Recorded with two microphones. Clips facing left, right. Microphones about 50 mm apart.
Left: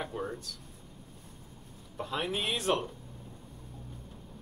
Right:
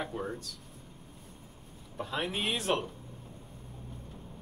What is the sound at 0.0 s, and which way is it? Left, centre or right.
Speech, centre.